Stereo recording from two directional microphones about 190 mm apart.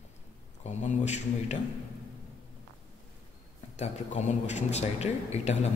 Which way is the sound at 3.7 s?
35° left (ahead or behind).